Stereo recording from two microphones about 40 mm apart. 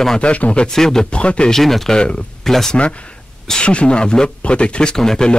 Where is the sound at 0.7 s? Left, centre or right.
Centre.